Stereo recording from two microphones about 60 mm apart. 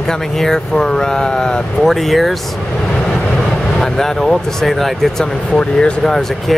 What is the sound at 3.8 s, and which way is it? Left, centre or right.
Speech, centre.